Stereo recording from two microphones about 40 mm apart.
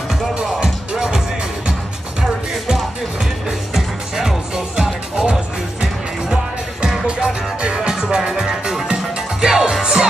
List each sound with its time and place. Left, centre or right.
0.6 s music: centre
3.4 s music: centre
5.1 s music: centre